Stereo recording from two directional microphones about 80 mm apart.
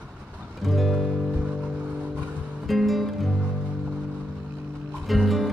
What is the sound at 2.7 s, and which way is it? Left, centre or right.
Music, centre.